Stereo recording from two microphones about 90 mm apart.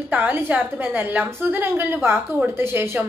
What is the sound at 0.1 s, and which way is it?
A woman's voice, 15° right (ahead or behind).